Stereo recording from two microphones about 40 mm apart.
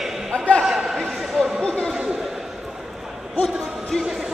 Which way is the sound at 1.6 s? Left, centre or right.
Left.